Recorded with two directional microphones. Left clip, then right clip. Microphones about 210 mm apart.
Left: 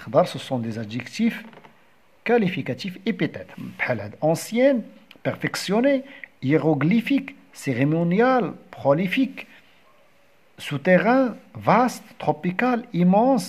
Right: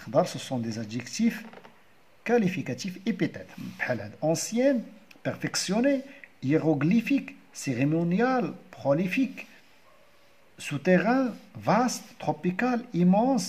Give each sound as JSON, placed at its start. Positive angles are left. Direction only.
{"t": 0.0, "sound": "speech", "side_deg": 20}
{"t": 10.6, "sound": "speech", "side_deg": 25}